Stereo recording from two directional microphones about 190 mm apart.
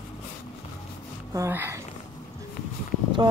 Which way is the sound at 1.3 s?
15° right (ahead or behind).